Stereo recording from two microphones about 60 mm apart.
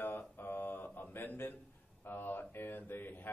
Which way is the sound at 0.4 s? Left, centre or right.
Left.